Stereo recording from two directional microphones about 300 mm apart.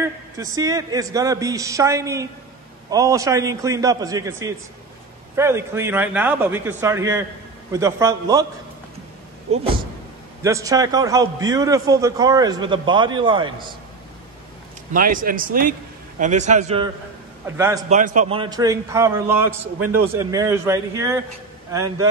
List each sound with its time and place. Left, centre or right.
0.4 s a man's voice: centre
9.5 s a man's voice: right
14.9 s speech: right
17.5 s a man's voice: centre
17.8 s a man's voice: right